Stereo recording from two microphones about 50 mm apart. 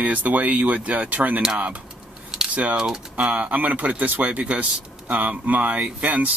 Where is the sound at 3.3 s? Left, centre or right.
Right.